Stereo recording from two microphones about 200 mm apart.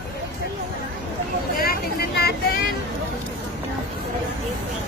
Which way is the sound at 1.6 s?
50° left (ahead or behind).